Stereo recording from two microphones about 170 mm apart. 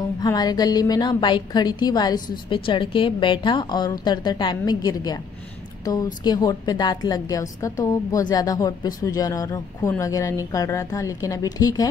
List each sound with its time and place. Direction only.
0.2 s a woman's voice: 25° left (ahead or behind)
6.2 s a woman's voice: 25° left (ahead or behind)